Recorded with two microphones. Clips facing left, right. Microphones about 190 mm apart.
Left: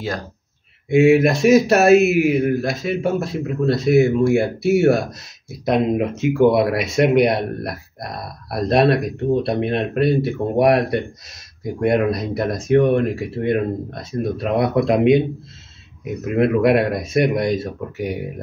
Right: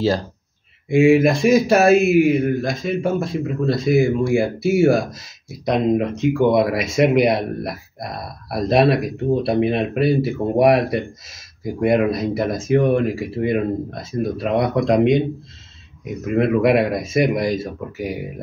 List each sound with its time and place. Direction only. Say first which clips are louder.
0.8 s speech: even; centre (ahead or behind)